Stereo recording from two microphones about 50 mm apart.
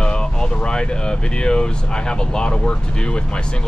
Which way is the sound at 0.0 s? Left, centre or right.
Centre.